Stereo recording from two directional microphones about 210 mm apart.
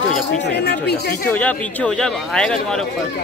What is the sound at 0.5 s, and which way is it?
Speech, 55° left (ahead or behind).